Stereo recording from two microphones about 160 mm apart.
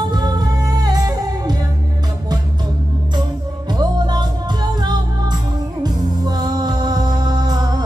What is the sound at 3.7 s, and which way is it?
Music, 25° right (ahead or behind).